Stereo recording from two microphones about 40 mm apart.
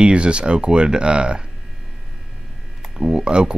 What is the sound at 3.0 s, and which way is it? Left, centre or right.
Speech, right.